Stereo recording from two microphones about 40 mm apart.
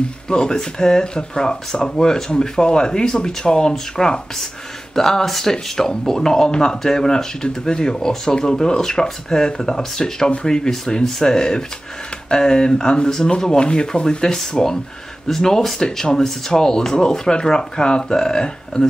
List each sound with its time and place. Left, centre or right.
0.3 s speech: centre